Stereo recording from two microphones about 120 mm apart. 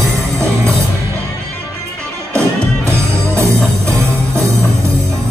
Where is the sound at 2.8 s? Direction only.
20° right (ahead or behind).